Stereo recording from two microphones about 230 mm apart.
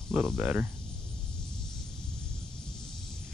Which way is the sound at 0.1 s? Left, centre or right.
Centre.